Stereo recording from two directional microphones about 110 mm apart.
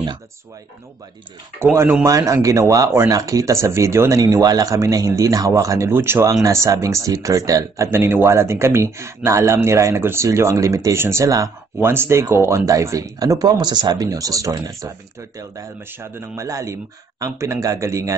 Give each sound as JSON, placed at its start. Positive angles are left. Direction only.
{"t": 1.6, "sound": "speech", "side_deg": -20}